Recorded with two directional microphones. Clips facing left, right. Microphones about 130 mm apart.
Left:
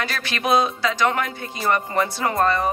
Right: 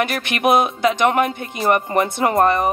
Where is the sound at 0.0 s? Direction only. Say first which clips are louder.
Right 7 dB; 20° right (ahead or behind).